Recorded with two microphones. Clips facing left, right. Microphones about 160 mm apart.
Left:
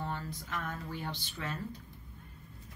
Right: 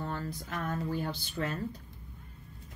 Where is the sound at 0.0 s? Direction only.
40° right (ahead or behind).